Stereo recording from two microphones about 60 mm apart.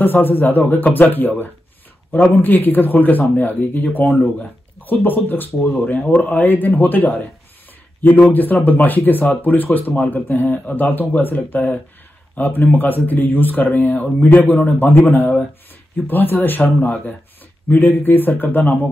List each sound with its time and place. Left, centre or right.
0.0 s speech: left
5.8 s a man's voice: left
17.6 s speech: left